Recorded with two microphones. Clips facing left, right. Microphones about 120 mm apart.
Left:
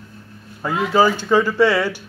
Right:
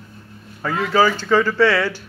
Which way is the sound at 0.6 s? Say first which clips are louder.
Left 1 dB; 15° left (ahead or behind).